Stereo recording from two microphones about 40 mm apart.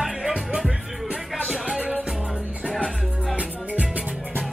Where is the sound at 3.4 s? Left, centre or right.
Right.